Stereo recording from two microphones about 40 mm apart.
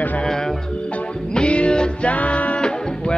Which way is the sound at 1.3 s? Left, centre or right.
Left.